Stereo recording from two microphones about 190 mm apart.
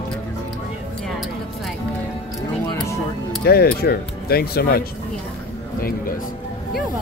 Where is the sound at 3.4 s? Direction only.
55° left (ahead or behind).